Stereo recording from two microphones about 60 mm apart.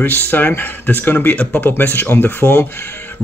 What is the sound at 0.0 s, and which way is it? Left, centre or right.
Speech, left.